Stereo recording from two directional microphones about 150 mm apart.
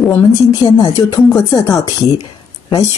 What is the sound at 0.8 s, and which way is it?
Speech, 30° left (ahead or behind).